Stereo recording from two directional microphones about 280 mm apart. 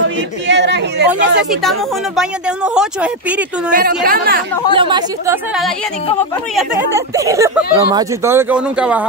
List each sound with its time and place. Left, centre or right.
0.5 s a sound: right
1.5 s speech: centre
3.7 s a woman's voice: right
4.7 s speech: centre
6.5 s speech: centre